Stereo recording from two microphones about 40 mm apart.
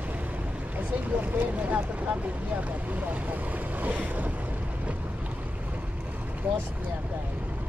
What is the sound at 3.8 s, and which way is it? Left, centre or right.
Boat, right.